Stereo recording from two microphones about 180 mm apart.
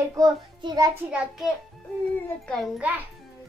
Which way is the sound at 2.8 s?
10° right (ahead or behind).